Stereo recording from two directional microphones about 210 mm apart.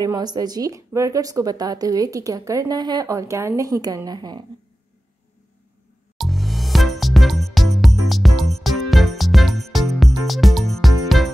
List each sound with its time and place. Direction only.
0.0 s speech: 20° right (ahead or behind)
6.1 s music: centre (ahead or behind)